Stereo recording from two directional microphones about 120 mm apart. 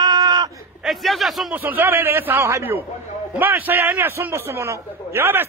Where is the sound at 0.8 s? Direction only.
Centre (ahead or behind).